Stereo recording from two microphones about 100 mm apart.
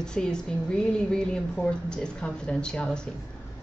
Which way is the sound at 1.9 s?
10° left (ahead or behind).